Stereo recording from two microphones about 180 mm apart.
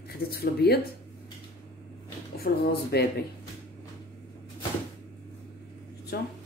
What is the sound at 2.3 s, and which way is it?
Speech, 60° left (ahead or behind).